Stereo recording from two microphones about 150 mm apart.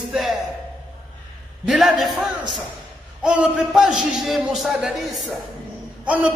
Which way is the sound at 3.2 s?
5° right (ahead or behind).